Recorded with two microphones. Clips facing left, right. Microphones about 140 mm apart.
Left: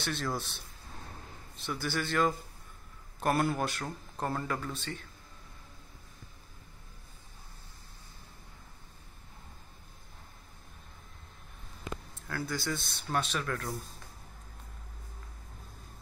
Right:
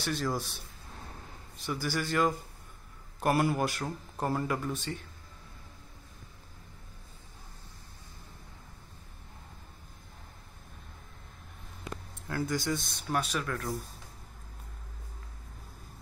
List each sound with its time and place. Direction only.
0.0 s speech: 5° right (ahead or behind)
1.7 s speech: 10° right (ahead or behind)
12.3 s speech: 20° right (ahead or behind); by 13.7 s centre (ahead or behind)